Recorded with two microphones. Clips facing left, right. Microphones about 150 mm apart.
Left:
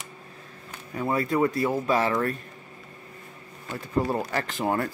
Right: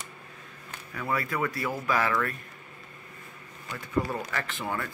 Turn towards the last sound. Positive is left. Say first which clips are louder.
# left 6 dB
turn(degrees=40)  # may be behind; listen again after turning